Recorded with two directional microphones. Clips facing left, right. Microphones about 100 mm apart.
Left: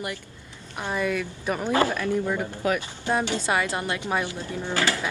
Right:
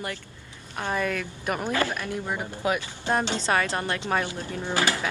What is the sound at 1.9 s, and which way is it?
Speech, 20° right (ahead or behind).